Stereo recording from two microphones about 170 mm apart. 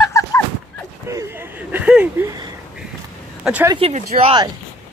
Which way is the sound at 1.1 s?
15° right (ahead or behind).